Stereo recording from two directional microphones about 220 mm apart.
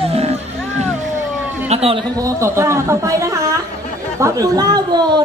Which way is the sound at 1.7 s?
30° right (ahead or behind).